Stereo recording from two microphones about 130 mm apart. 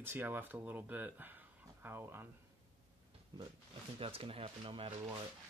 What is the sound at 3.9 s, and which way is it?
Speech, 45° right (ahead or behind).